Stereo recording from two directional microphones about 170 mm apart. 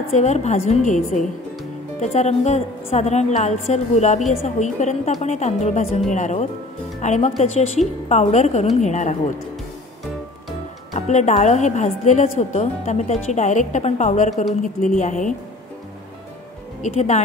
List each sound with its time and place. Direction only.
0.1 s a woman's voice: 40° left (ahead or behind)
11.0 s a woman's voice: 45° left (ahead or behind)
16.8 s a woman's voice: 40° left (ahead or behind)